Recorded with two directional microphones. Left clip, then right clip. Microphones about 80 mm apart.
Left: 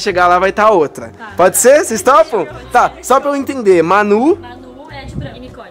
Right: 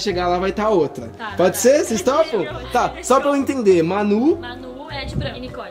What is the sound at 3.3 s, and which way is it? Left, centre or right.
Speech, centre.